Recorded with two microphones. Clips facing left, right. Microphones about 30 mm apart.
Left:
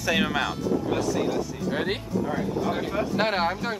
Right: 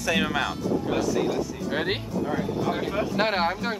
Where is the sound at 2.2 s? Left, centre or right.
Centre.